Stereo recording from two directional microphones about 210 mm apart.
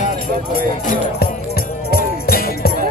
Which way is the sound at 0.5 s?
45° left (ahead or behind).